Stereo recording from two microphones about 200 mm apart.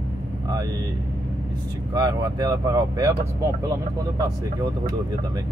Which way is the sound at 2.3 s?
20° right (ahead or behind).